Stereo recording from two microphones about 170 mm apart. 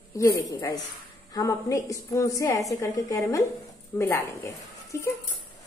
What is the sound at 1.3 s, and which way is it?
Speech, 20° left (ahead or behind).